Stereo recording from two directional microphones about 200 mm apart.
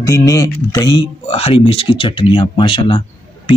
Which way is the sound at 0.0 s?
15° left (ahead or behind).